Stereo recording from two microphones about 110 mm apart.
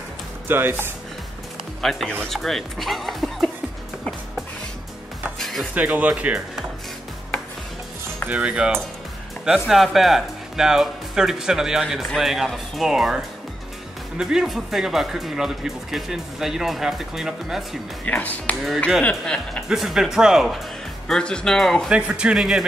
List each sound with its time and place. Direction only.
0.5 s speech: 20° right (ahead or behind)
1.8 s speech: centre (ahead or behind)
5.4 s music: centre (ahead or behind)
5.8 s speech: 15° right (ahead or behind)
8.3 s speech: 10° right (ahead or behind)
18.0 s speech: 15° left (ahead or behind)
19.7 s speech: 5° right (ahead or behind)
21.9 s speech: 10° right (ahead or behind)